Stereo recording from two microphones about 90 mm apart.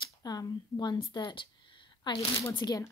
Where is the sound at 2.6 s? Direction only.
45° left (ahead or behind).